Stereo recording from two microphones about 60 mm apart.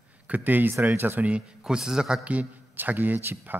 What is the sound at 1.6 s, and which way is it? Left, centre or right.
Speech, centre.